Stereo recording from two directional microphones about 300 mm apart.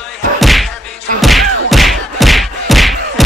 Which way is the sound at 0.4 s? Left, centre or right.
Centre.